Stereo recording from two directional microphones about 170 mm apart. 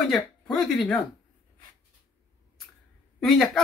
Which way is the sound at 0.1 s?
Centre (ahead or behind).